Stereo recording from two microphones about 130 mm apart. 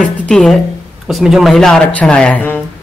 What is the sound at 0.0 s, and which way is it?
A woman's voice, 5° left (ahead or behind).